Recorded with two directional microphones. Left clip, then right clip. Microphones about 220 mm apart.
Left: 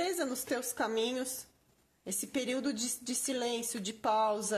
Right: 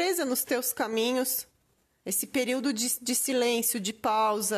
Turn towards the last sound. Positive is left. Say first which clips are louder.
# right 4 dB
turn(degrees=-40)  # may be behind; listen again after turning